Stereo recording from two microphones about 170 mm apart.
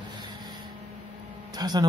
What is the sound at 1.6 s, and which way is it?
Speech, 25° right (ahead or behind).